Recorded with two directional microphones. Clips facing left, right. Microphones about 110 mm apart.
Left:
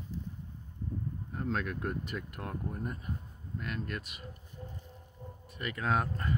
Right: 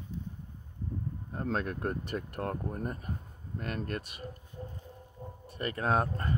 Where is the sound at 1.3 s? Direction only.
35° right (ahead or behind).